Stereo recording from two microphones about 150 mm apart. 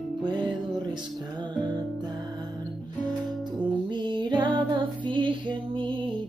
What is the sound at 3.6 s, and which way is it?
Music, 30° right (ahead or behind).